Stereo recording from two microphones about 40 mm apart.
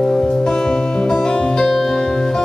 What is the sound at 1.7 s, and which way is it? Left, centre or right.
Music, centre.